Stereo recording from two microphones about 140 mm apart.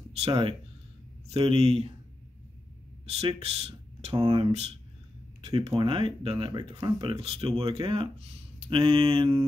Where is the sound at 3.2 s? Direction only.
40° right (ahead or behind).